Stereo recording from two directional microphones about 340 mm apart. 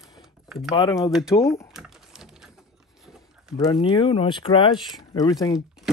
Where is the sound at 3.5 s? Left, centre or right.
Centre.